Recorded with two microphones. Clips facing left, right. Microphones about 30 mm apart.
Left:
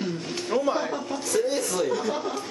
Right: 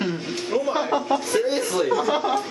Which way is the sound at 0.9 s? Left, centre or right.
Right.